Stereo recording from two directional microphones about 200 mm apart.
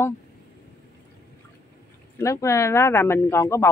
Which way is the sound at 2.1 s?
15° left (ahead or behind).